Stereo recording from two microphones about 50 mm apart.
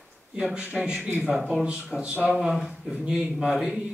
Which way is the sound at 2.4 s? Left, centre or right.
Centre.